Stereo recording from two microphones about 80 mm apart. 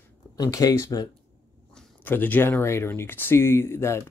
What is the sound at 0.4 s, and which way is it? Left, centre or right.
Speech, left.